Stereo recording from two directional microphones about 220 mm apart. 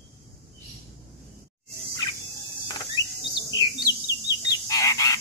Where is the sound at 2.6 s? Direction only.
20° left (ahead or behind).